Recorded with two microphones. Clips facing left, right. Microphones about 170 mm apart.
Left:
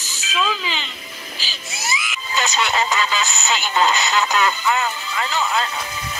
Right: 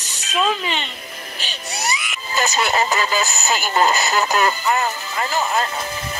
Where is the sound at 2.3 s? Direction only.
40° right (ahead or behind).